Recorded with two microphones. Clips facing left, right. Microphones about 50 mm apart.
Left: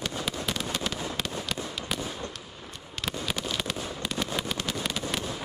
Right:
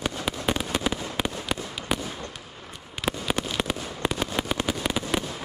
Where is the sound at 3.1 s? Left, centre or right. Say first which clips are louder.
Right 5 dB; centre.